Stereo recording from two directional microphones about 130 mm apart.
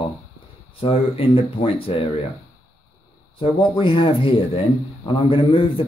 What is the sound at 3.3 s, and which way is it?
Speech, 40° left (ahead or behind).